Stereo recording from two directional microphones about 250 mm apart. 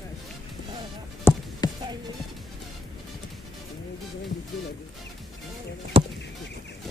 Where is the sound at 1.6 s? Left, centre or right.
Centre.